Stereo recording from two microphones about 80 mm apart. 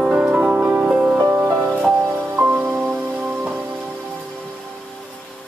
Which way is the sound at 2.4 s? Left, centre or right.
Centre.